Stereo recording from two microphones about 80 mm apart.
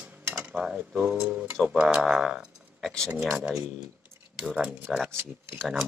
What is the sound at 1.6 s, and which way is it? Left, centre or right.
Speech, centre.